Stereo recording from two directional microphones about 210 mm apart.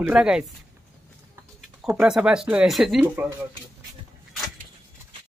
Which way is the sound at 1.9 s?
5° right (ahead or behind).